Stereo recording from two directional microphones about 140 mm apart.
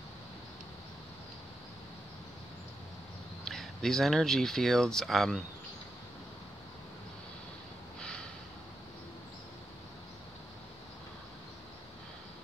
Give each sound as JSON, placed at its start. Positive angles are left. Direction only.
{"t": 3.4, "sound": "speech", "side_deg": 5}
{"t": 8.0, "sound": "snort", "side_deg": 5}